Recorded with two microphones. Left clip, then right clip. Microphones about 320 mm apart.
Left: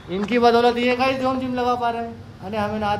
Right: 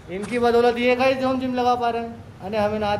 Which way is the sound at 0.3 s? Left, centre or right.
Left.